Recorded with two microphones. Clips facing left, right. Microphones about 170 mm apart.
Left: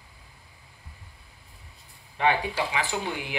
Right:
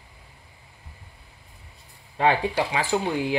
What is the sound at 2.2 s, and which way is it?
Speech, 35° right (ahead or behind).